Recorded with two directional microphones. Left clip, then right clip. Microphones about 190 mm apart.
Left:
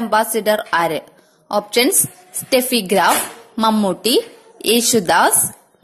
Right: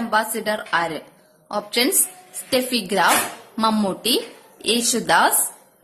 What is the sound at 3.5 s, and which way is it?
A woman's voice, 25° left (ahead or behind).